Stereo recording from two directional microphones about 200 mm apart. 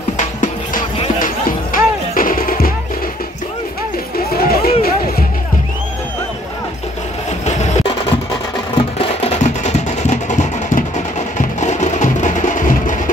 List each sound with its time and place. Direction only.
0.9 s music: 30° left (ahead or behind)
1.7 s music: 45° left (ahead or behind)
4.4 s music: 50° left (ahead or behind)
7.4 s music: 35° left (ahead or behind)